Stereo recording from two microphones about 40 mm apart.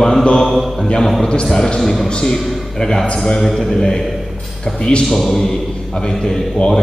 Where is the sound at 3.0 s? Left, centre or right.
Left.